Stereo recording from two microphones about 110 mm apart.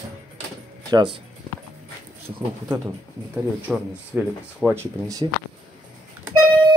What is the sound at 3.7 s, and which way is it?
Speech, 5° right (ahead or behind).